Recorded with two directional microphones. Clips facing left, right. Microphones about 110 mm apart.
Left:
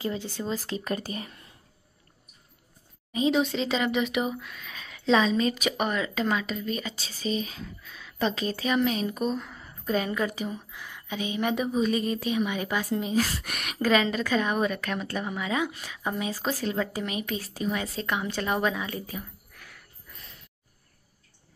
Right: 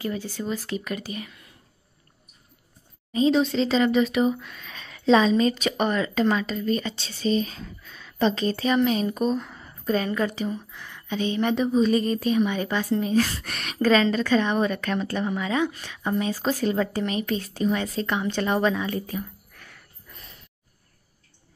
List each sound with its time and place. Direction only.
0.0 s speech: 25° left (ahead or behind)
3.1 s a woman's voice: 15° left (ahead or behind)